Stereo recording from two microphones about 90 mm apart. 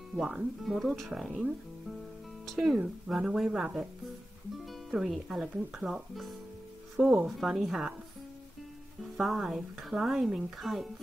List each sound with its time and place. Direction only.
0.1 s speech: 5° right (ahead or behind)
2.4 s speech: centre (ahead or behind)
4.9 s speech: centre (ahead or behind)
9.1 s speech: centre (ahead or behind)